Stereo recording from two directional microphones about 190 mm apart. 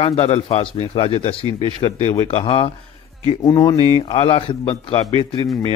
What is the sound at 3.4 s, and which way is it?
Speech, 20° left (ahead or behind).